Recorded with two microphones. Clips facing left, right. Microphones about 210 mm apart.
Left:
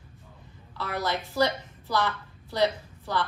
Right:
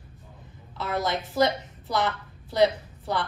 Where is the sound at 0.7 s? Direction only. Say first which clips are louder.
Right 2 dB; 20° right (ahead or behind).